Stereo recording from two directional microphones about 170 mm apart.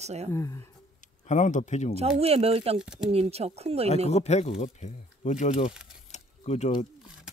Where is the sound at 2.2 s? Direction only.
35° right (ahead or behind).